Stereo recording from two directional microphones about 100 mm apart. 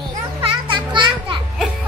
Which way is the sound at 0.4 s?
55° right (ahead or behind).